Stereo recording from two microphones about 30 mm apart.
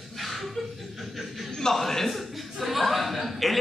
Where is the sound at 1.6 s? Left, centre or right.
Centre.